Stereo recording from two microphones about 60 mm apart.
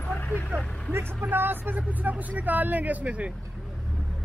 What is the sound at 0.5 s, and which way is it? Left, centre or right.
Speech, right.